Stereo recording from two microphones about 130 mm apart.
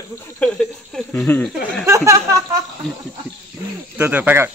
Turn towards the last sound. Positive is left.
turn(degrees=-15)  # may be behind; listen again after turning